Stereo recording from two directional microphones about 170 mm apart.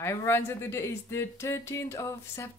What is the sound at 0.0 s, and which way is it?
Speech, 15° left (ahead or behind).